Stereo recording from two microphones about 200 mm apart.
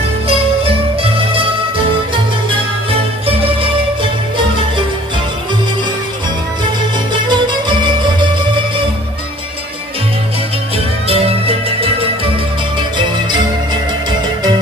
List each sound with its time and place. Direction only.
0.3 s music: 30° right (ahead or behind)
7.1 s music: 25° right (ahead or behind)
11.1 s music: 30° right (ahead or behind)